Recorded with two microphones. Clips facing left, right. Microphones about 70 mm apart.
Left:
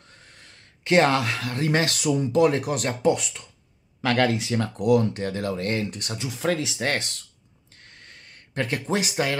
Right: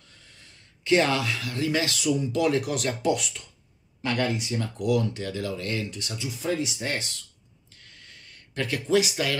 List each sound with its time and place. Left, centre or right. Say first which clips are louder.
0.1 s speech: left 4 dB; left
4.0 s speech: left 5 dB; left
4.6 s speech: left 5 dB; left
7.7 s a sound: left 3 dB; left